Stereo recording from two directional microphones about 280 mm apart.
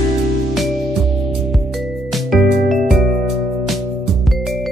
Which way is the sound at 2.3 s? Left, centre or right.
Centre.